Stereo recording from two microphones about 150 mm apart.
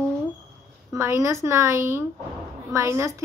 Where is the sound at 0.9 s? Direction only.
20° right (ahead or behind).